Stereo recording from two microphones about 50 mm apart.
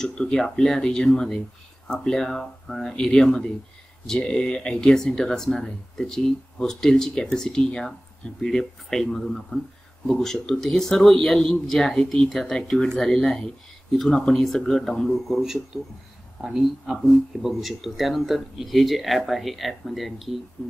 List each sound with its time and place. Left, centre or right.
0.0 s speech: centre
2.9 s speech: centre
15.3 s speech: centre